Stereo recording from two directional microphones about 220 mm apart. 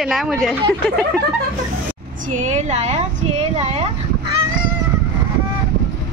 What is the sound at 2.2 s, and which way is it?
A woman's voice, 35° right (ahead or behind).